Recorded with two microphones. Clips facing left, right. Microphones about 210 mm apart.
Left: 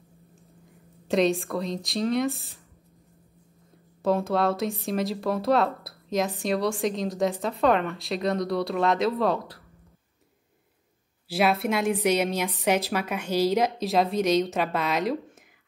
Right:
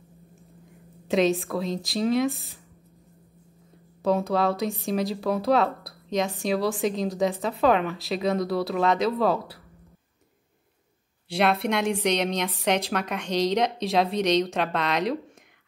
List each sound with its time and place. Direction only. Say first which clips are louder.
1.0 s a woman's voice: right 1 dB; centre (ahead or behind)
4.0 s a woman's voice: even; centre (ahead or behind)
11.2 s a woman's voice: even; centre (ahead or behind)